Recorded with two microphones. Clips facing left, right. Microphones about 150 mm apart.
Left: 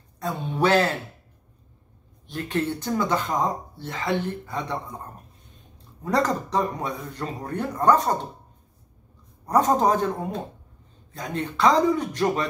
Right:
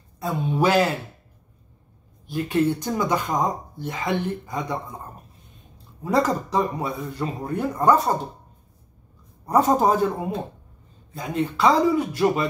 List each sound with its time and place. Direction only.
0.2 s speech: 10° right (ahead or behind)
2.2 s speech: 10° right (ahead or behind)
6.0 s speech: 10° right (ahead or behind)
9.5 s speech: 10° right (ahead or behind)